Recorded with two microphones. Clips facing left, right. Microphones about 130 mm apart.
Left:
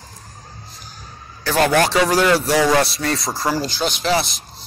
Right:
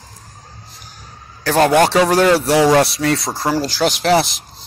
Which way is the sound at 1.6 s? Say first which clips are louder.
Right 4 dB; 25° right (ahead or behind).